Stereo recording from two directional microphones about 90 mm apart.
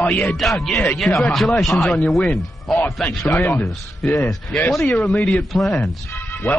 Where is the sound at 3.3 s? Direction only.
30° left (ahead or behind).